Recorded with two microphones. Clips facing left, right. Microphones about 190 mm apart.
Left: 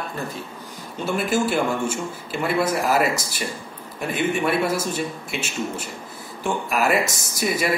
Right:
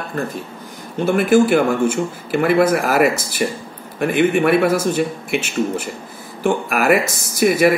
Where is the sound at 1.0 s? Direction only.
55° right (ahead or behind).